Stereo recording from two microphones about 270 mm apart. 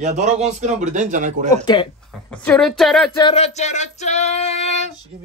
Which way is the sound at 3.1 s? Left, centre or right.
Centre.